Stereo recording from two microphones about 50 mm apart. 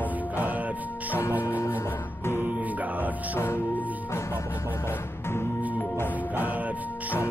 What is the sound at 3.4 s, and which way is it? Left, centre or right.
Music, left.